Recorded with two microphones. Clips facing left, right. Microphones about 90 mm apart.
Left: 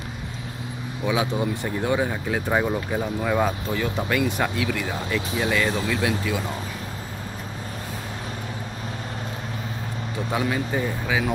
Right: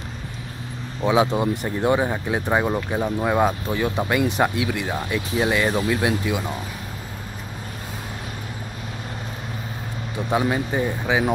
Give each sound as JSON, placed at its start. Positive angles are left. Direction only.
{"t": 1.0, "sound": "speech", "side_deg": -30}
{"t": 10.3, "sound": "speech", "side_deg": -25}